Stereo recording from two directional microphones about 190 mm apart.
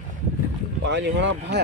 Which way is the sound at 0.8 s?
70° right (ahead or behind).